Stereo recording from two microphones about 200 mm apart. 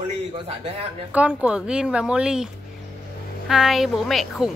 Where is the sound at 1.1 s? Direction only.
5° right (ahead or behind).